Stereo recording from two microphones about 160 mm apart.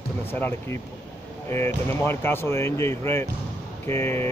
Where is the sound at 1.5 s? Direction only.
15° left (ahead or behind).